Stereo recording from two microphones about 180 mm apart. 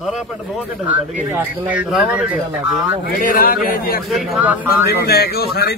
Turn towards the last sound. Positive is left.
turn(degrees=65)  # may be behind; listen again after turning